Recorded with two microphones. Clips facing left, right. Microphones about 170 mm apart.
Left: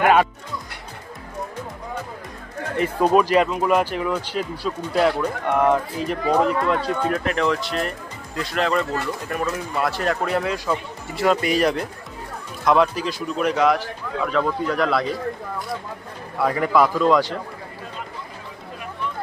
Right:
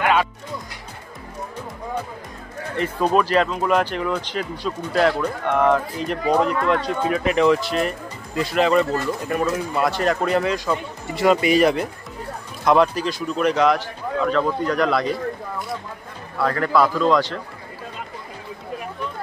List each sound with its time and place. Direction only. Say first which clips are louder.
0.0 s music: left 3 dB; 50° left (ahead or behind)
2.8 s a man's voice: left 2 dB; 10° left (ahead or behind)
16.3 s speech: even; 10° left (ahead or behind)